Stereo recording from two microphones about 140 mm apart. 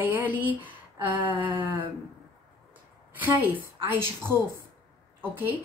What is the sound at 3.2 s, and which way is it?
A woman's voice, 15° right (ahead or behind).